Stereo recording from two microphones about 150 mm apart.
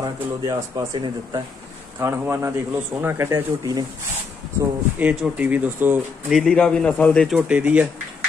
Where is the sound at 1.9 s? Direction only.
15° right (ahead or behind).